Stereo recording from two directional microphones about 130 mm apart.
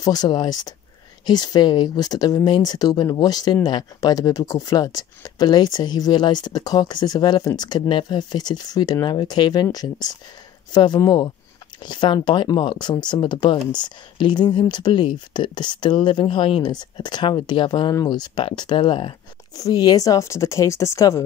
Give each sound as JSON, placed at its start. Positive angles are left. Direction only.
{"t": 0.0, "sound": "speech", "side_deg": 30}
{"t": 19.5, "sound": "speech", "side_deg": 30}